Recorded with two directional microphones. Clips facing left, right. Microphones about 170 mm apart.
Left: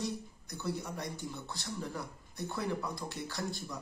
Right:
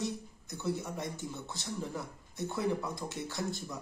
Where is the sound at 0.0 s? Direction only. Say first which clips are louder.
Right 1 dB; 20° right (ahead or behind).